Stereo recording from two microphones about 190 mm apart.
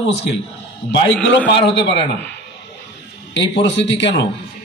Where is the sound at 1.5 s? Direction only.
65° left (ahead or behind).